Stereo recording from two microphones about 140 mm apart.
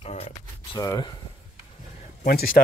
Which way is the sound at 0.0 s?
45° left (ahead or behind).